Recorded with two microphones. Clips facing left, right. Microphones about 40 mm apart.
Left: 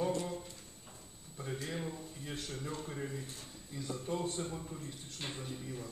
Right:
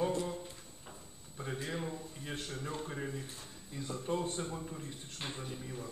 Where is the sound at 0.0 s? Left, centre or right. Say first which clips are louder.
Right 1 dB; centre.